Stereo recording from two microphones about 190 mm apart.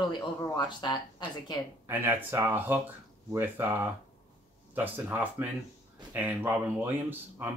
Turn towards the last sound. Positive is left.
turn(degrees=-10)  # may be behind; listen again after turning